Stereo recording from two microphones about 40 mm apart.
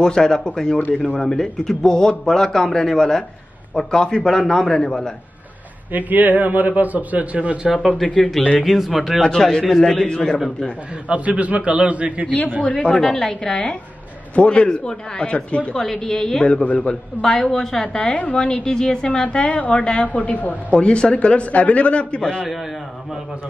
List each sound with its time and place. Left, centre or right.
0.0 s speech: centre
5.9 s a man's voice: right
8.2 s a man's voice: centre
9.2 s speech: centre
10.0 s a man's voice: left
11.1 s a man's voice: right
12.9 s a man's voice: centre; by 15.7 s left
15.7 s speech: centre
16.6 s a woman's voice: left
17.2 s speech: centre
17.8 s a man's voice: left
20.1 s a woman's voice: left
20.7 s a man's voice: left